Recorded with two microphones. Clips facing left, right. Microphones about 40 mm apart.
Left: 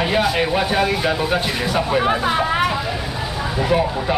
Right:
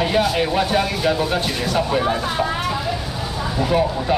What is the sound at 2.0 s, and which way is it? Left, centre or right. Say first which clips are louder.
Speech: left 2 dB; left.